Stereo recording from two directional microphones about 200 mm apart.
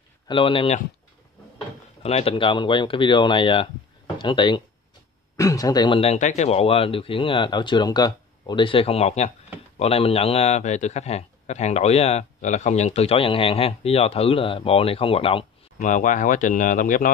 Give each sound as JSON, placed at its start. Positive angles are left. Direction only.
{"t": 0.3, "sound": "speech", "side_deg": 25}
{"t": 2.0, "sound": "a man's voice", "side_deg": 30}